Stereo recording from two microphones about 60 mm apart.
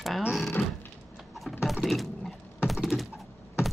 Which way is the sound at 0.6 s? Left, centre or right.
Centre.